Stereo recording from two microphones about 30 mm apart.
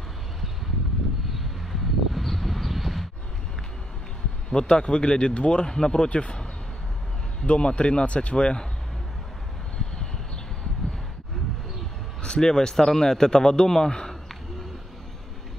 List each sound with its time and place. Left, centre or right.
1.3 s a sound: centre
4.5 s a man's voice: left
7.4 s speech: left
12.4 s a man's voice: left